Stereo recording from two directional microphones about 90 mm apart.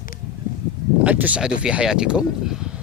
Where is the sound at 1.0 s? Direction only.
15° right (ahead or behind).